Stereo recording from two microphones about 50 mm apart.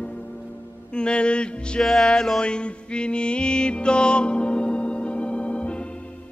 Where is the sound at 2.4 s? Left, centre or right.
Left.